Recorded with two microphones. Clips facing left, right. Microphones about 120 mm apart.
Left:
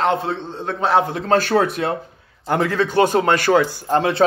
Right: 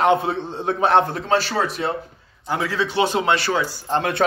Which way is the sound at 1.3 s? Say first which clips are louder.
Left 4 dB; 50° left (ahead or behind).